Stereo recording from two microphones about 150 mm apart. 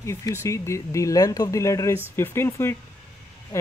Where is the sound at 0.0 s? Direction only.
20° left (ahead or behind).